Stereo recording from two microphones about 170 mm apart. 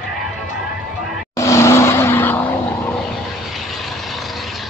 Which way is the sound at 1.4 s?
15° left (ahead or behind).